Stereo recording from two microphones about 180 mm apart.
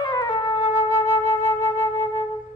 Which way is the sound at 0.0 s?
25° left (ahead or behind).